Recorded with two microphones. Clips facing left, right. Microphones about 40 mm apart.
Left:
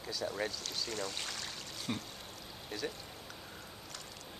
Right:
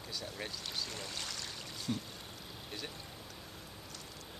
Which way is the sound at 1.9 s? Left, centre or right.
Left.